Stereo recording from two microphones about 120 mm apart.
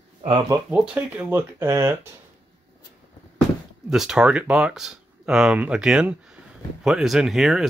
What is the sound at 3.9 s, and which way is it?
Speech, 5° right (ahead or behind).